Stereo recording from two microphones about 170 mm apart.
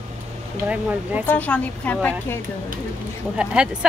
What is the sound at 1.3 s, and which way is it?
A woman's voice, 10° left (ahead or behind).